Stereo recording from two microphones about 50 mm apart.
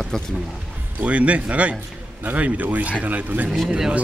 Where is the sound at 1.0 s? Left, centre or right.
Right.